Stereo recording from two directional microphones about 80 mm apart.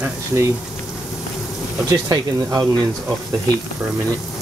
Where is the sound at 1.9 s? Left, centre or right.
Right.